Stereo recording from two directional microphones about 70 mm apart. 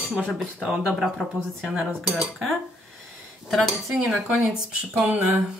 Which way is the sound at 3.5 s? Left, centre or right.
Centre.